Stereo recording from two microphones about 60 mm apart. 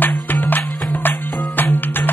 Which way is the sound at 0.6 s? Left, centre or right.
Centre.